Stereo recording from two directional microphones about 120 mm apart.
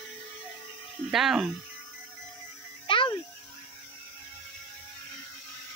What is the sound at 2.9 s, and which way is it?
Music, 45° left (ahead or behind).